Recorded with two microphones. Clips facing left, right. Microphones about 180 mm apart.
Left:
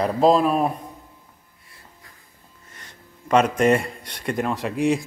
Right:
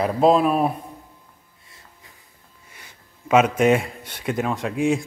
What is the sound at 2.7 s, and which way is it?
A man's voice, 10° right (ahead or behind).